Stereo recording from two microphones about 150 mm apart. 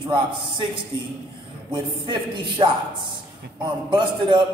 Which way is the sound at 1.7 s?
35° right (ahead or behind).